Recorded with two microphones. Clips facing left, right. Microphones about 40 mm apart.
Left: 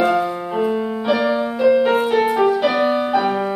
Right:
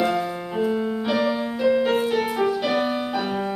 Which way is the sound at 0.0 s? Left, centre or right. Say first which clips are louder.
Left 5 dB; centre.